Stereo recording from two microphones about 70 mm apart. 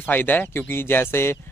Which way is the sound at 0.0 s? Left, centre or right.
Left.